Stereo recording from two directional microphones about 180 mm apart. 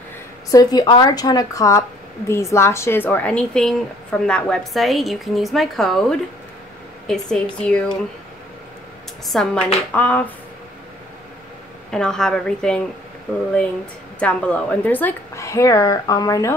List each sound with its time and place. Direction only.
0.5 s a woman's voice: 20° left (ahead or behind); by 7.8 s 5° left (ahead or behind)
9.3 s a woman's voice: centre (ahead or behind)
11.9 s a woman's voice: 5° left (ahead or behind)
14.2 s a woman's voice: 5° left (ahead or behind)